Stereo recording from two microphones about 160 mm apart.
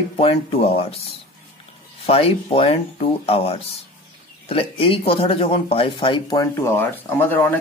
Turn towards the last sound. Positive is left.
turn(degrees=10)  # may be behind; listen again after turning